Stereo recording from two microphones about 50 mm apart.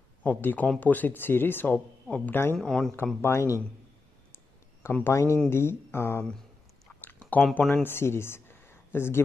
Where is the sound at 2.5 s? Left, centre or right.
Centre.